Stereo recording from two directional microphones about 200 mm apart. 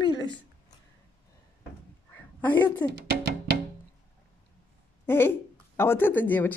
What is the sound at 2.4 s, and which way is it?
Speech, 10° left (ahead or behind).